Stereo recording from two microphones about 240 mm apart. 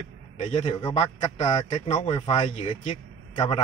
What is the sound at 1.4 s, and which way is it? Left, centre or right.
A man's voice, centre.